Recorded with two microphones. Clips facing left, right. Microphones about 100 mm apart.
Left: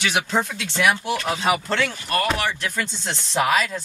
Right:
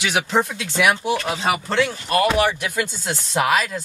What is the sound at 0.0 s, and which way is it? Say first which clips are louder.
Speech: right 2 dB; 10° right (ahead or behind).